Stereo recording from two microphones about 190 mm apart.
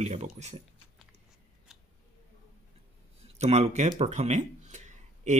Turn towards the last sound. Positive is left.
turn(degrees=-40)  # may be behind; listen again after turning